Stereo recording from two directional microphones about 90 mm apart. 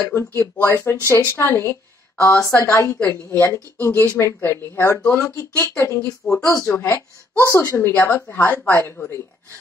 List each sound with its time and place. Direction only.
0.1 s speech: 30° left (ahead or behind)
6.7 s speech: 20° left (ahead or behind)
7.0 s speech: 35° left (ahead or behind)